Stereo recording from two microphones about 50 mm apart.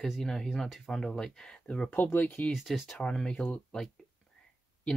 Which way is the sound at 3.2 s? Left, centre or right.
Centre.